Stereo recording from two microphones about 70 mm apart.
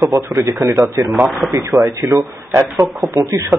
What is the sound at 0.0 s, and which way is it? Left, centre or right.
A man's voice, right.